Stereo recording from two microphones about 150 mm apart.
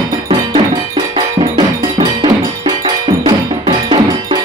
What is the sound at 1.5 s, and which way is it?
Percussion, 30° right (ahead or behind).